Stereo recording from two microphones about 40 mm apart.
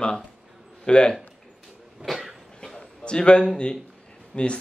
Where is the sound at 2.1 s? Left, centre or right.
Centre.